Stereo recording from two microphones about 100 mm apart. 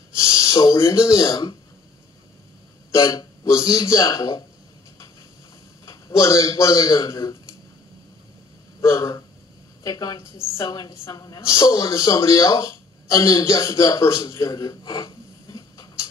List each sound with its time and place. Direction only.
0.1 s a sound: 30° left (ahead or behind)
1.1 s a woman's voice: 35° left (ahead or behind)
2.9 s a woman's voice: 35° left (ahead or behind)
5.9 s a man's voice: 30° left (ahead or behind)
8.8 s a woman's voice: 30° left (ahead or behind)